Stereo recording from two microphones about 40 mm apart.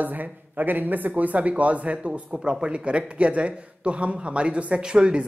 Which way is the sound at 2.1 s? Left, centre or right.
Right.